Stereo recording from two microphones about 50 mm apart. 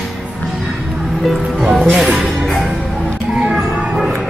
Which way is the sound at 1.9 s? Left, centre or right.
Centre.